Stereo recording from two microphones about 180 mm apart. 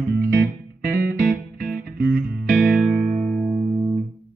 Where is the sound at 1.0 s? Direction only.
60° right (ahead or behind).